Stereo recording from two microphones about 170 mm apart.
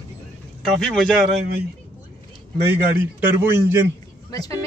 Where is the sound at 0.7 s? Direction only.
5° left (ahead or behind).